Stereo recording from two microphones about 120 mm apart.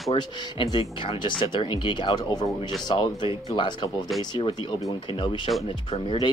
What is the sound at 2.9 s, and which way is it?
Speech, 45° left (ahead or behind).